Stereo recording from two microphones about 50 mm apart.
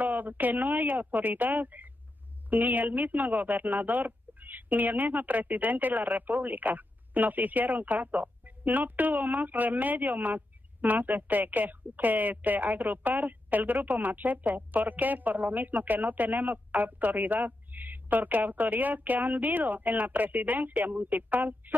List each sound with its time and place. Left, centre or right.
0.0 s speech: right